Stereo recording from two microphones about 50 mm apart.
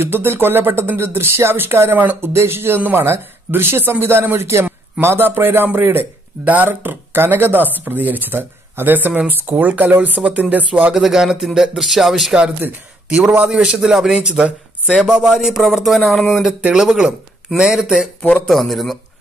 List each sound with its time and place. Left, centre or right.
0.0 s speech: right
1.9 s speech: right
2.2 s speech: right
6.4 s speech: right
6.7 s speech: right
10.9 s speech: centre
13.1 s a man's voice: right
13.5 s speech: centre
15.2 s a sound: centre
16.6 s speech: centre
16.9 s speech: centre
18.5 s a sound: centre